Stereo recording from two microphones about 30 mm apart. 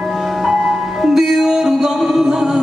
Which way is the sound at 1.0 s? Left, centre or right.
Centre.